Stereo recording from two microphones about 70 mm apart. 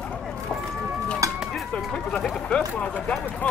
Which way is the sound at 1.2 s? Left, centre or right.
Right.